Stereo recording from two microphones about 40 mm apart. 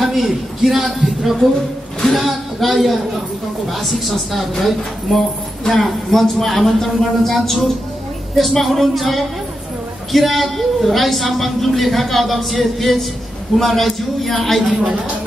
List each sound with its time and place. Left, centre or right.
0.0 s a woman's voice: centre
14.7 s a woman's voice: right